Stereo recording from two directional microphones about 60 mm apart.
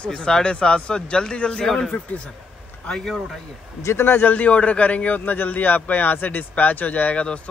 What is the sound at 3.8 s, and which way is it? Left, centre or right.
A man's voice, left.